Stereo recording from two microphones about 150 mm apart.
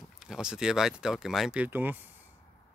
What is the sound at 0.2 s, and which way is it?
Speech, 5° right (ahead or behind).